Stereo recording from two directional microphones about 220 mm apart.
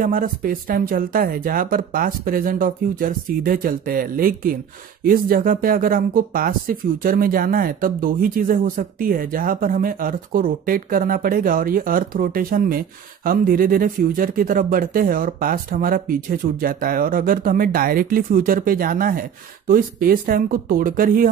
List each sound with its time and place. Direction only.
0.0 s speech: 40° right (ahead or behind)